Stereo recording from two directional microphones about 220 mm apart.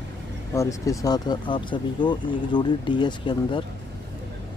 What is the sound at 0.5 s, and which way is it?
Speech, 15° left (ahead or behind).